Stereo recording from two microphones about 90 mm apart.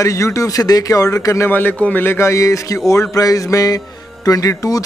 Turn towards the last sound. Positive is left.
turn(degrees=40)  # may be behind; listen again after turning